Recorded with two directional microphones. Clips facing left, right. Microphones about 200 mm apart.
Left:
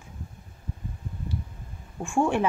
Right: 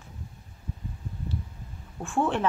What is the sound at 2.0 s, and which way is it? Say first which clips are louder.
Speech: left 2 dB; 10° left (ahead or behind).